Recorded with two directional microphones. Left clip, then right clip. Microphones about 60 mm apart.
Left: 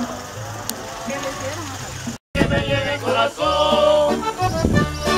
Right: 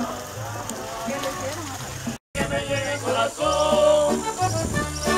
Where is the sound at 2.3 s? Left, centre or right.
Left.